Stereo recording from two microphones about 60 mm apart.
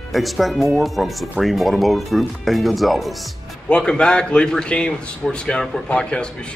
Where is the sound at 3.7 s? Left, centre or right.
Centre.